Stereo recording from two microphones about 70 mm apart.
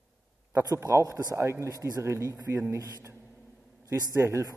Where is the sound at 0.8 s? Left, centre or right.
Right.